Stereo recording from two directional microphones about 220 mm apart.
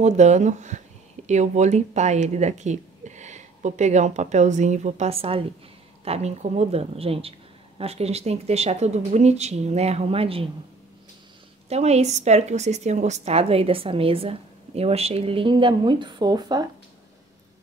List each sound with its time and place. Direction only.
0.0 s a woman's voice: 30° right (ahead or behind)
11.7 s a woman's voice: 30° right (ahead or behind)